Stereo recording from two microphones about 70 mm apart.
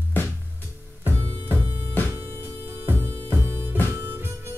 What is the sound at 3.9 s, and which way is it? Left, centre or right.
Harmonica, right.